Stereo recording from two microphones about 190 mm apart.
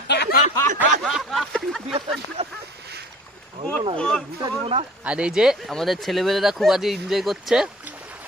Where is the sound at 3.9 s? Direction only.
5° left (ahead or behind).